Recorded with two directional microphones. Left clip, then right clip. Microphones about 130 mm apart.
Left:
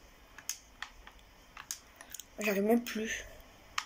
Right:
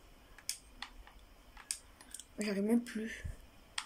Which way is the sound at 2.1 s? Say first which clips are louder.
Left 6 dB; 45° right (ahead or behind).